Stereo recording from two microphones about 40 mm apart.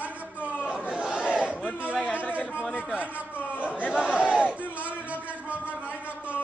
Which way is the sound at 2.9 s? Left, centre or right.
Right.